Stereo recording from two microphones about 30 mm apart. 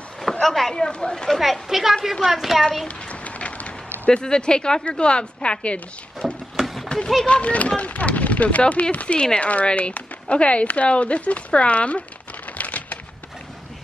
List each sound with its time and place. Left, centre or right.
0.3 s speech: centre
0.8 s a woman's voice: left
1.1 s speech: centre
1.4 s a woman's voice: centre
3.1 s a sound: left
4.1 s a woman's voice: left
6.2 s a sound: centre
6.9 s a woman's voice: left
7.5 s speech: left
12.5 s a sound: left